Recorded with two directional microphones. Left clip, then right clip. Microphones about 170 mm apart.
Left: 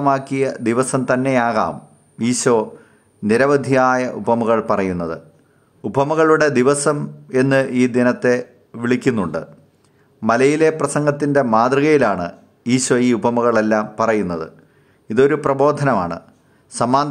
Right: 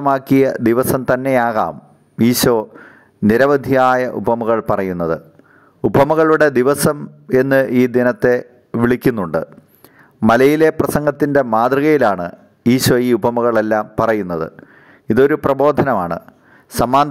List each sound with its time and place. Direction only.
0.0 s speech: 40° right (ahead or behind)